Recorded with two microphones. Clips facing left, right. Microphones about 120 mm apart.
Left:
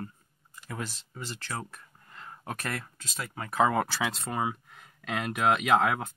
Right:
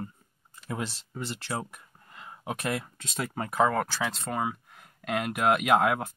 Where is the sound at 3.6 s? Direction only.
5° left (ahead or behind).